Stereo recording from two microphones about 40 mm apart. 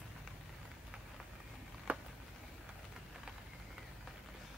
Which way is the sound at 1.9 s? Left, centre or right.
Right.